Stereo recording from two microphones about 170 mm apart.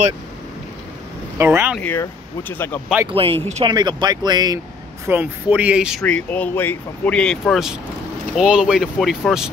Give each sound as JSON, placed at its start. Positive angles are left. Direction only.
{"t": 1.4, "sound": "speech", "side_deg": -15}
{"t": 1.8, "sound": "speech", "side_deg": 10}
{"t": 3.1, "sound": "speech", "side_deg": -35}
{"t": 3.6, "sound": "speech", "side_deg": -25}
{"t": 5.0, "sound": "speech", "side_deg": -10}
{"t": 6.0, "sound": "speech", "side_deg": 5}